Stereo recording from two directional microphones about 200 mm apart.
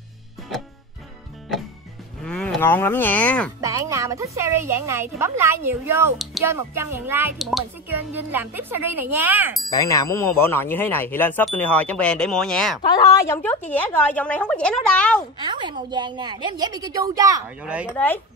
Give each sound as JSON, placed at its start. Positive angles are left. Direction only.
{"t": 2.2, "sound": "speech", "side_deg": 5}
{"t": 3.6, "sound": "speech", "side_deg": -15}
{"t": 9.7, "sound": "speech", "side_deg": 15}
{"t": 15.3, "sound": "a woman's voice", "side_deg": -20}
{"t": 17.6, "sound": "speech", "side_deg": -5}
{"t": 17.9, "sound": "speech", "side_deg": 10}